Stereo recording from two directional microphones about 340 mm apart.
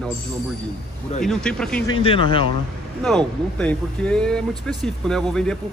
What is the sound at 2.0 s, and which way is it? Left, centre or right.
Speech, centre.